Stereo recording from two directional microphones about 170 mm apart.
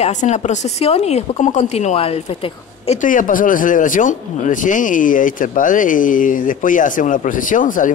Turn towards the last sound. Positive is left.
turn(degrees=50)  # may be behind; listen again after turning